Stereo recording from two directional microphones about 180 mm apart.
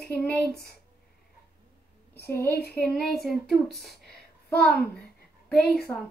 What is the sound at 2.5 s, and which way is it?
Speech, 60° left (ahead or behind).